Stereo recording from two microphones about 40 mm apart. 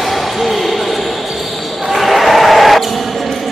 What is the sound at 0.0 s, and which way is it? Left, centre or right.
Basketball bounce, centre.